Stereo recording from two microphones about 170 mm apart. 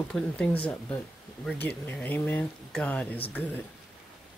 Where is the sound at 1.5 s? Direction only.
10° left (ahead or behind).